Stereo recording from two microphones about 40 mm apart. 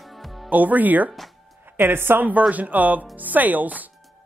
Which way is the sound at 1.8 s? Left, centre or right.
Right.